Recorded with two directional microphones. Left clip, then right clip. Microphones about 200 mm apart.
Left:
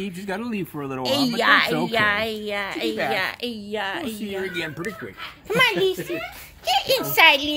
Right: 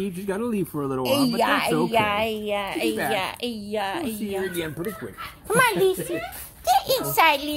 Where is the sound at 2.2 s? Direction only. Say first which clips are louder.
Right 1 dB; 45° left (ahead or behind).